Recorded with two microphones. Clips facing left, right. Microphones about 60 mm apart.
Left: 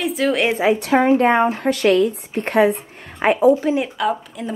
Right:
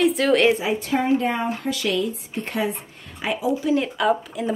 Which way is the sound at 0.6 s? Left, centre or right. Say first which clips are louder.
Left 7 dB; left.